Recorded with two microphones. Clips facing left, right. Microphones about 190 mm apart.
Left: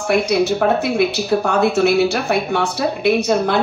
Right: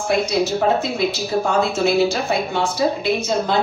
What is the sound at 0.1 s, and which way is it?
Speech, 60° left (ahead or behind).